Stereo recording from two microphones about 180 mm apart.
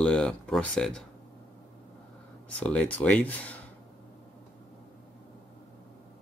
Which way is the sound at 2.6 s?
5° left (ahead or behind).